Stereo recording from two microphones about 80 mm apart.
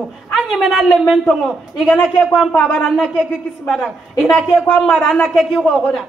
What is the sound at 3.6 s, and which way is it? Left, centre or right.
A man's voice, centre.